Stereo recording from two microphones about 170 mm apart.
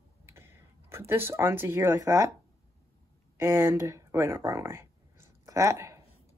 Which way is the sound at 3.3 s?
20° right (ahead or behind).